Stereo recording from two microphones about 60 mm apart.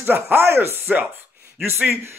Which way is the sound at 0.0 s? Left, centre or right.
Right.